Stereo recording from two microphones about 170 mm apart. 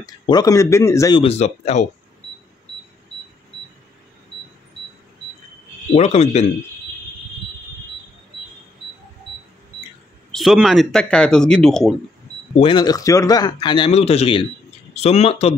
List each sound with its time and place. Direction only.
0.0 s speech: 20° left (ahead or behind)
1.1 s speech: 35° left (ahead or behind)
5.9 s speech: 40° left (ahead or behind)
10.3 s speech: centre (ahead or behind)
12.5 s speech: 30° left (ahead or behind)